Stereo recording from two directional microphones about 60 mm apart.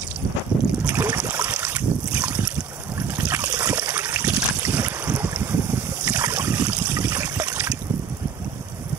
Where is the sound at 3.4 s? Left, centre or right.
Right.